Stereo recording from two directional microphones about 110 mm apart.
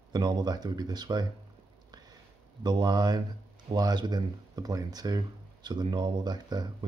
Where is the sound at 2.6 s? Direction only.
40° right (ahead or behind).